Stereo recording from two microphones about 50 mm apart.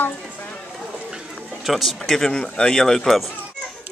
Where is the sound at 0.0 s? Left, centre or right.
Left.